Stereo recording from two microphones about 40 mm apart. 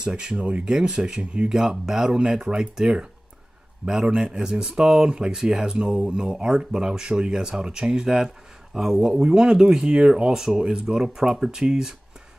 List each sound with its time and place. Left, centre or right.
0.0 s speech: right
0.4 s speech: right
0.7 s speech: right
1.6 s speech: centre